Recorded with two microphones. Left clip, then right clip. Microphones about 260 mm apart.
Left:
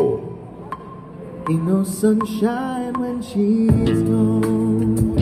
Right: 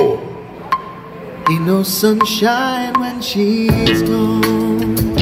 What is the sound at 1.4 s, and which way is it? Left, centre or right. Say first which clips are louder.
Music: right 7 dB; right.